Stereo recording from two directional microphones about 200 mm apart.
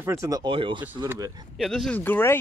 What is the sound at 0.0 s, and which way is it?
Speech, 15° right (ahead or behind).